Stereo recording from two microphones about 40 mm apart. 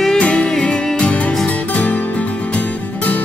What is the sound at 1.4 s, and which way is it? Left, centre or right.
Music, left.